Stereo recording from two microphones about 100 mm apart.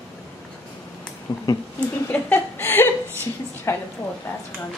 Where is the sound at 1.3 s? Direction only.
45° left (ahead or behind).